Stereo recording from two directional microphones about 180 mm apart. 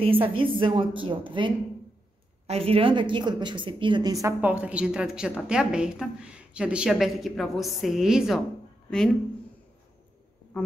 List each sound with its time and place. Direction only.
0.0 s a woman's voice: 30° right (ahead or behind); by 8.4 s 5° right (ahead or behind)